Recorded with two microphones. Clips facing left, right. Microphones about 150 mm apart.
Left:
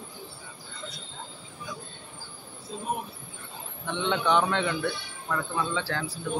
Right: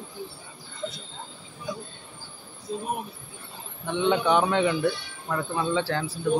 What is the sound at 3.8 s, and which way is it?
A man's voice, 15° right (ahead or behind).